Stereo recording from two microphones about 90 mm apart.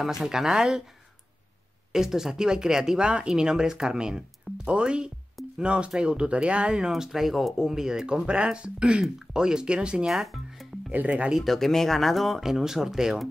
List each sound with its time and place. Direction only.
0.0 s speech: 5° right (ahead or behind)
1.9 s speech: 5° right (ahead or behind)
10.9 s speech: 15° right (ahead or behind)
11.3 s speech: centre (ahead or behind)